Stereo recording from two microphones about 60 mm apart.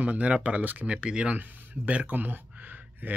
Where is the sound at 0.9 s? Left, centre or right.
Centre.